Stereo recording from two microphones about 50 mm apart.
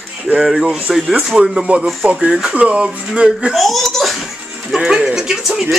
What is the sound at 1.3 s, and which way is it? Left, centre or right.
Speech, centre.